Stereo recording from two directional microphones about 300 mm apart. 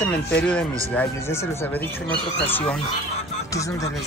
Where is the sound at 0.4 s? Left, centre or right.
Centre.